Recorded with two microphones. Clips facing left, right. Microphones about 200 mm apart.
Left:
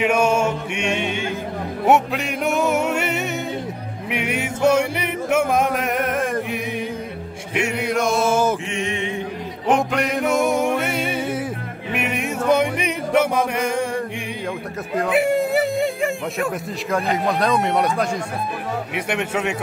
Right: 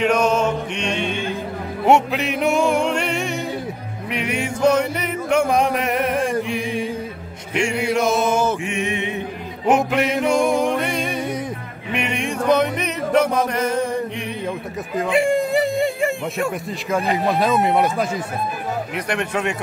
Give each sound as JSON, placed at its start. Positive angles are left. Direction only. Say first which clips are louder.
{"t": 0.0, "sound": "music", "louder": "even", "side_deg": 10}
{"t": 7.9, "sound": "music", "louder": "even", "side_deg": 0}
{"t": 8.6, "sound": "music", "louder": "right 1 dB", "side_deg": -15}
{"t": 9.7, "sound": "music", "louder": "right 2 dB", "side_deg": -5}
{"t": 15.0, "sound": "a sound", "louder": "even", "side_deg": 5}
{"t": 16.9, "sound": "speech", "louder": "right 1 dB", "side_deg": 0}